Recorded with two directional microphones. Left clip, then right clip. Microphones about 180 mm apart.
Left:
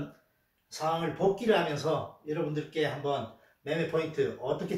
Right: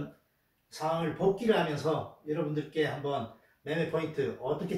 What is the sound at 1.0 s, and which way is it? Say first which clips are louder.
Speech: left 1 dB; 10° left (ahead or behind).